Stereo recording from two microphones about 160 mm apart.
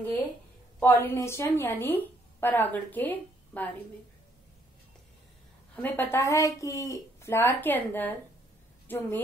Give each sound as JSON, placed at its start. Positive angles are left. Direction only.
{"t": 0.7, "sound": "a woman's voice", "side_deg": 15}
{"t": 5.8, "sound": "a woman's voice", "side_deg": 10}